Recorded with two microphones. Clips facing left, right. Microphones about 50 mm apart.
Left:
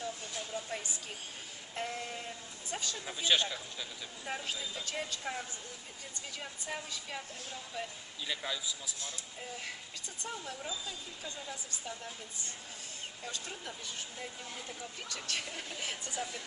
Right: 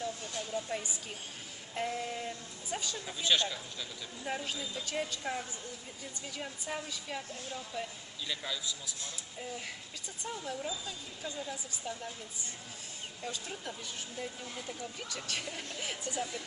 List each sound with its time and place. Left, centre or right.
0.0 s a sound: centre
1.8 s a man's voice: centre
6.6 s a man's voice: centre
10.2 s speech: centre
13.2 s speech: centre